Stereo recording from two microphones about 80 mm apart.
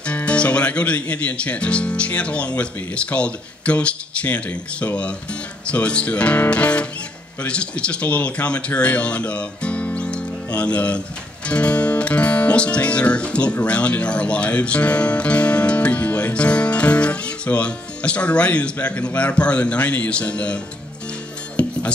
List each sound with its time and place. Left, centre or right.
0.0 s speech: centre
21.6 s music: centre